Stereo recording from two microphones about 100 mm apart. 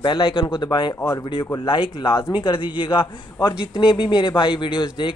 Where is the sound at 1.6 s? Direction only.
65° left (ahead or behind).